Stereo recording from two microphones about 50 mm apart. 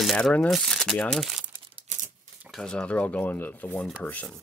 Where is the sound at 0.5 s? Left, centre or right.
Centre.